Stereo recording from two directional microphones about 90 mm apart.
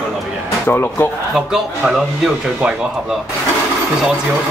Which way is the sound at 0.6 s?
25° left (ahead or behind).